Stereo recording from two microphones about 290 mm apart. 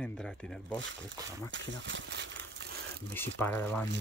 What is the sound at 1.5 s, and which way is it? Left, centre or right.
Speech, right.